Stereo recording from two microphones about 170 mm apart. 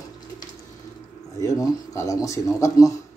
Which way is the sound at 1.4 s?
20° left (ahead or behind).